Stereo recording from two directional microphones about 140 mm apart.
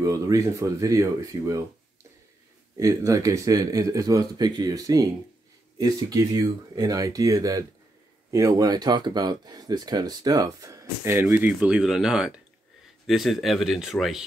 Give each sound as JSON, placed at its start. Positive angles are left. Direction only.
{"t": 0.0, "sound": "speech", "side_deg": -25}
{"t": 2.8, "sound": "speech", "side_deg": -25}